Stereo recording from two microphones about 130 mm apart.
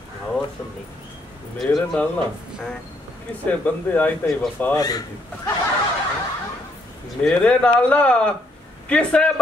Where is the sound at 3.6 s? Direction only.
10° left (ahead or behind).